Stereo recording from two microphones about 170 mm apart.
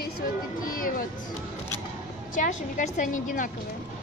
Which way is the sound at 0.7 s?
55° left (ahead or behind).